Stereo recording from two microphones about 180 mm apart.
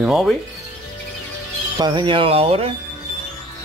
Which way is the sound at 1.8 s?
25° right (ahead or behind).